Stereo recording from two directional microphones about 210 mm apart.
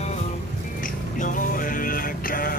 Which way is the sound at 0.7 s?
40° left (ahead or behind).